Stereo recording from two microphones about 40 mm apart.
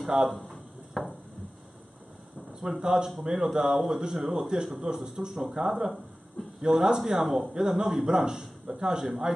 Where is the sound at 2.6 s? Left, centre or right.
Centre.